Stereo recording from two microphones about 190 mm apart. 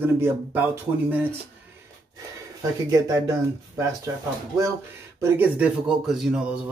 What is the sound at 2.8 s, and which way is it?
Speech, 15° right (ahead or behind).